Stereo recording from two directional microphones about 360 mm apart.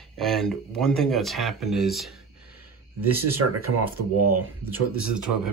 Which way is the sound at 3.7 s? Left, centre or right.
Right.